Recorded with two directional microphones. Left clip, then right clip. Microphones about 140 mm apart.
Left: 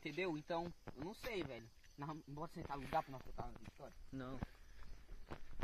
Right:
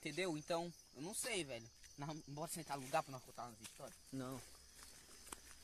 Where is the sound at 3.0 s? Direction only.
30° right (ahead or behind).